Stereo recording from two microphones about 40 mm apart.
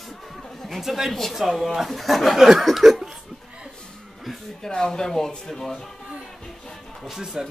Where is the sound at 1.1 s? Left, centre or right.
Centre.